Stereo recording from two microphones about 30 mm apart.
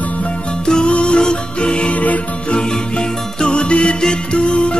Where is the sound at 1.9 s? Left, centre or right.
Left.